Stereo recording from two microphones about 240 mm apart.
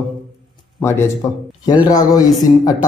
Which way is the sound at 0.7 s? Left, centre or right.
Centre.